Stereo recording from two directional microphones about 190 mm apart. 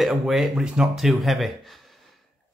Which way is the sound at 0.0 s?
Centre (ahead or behind).